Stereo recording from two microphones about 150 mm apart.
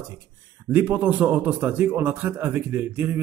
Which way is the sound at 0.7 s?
10° right (ahead or behind).